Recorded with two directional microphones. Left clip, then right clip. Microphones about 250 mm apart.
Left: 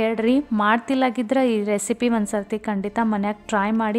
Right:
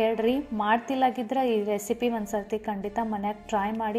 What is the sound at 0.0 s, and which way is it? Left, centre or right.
Speech, centre.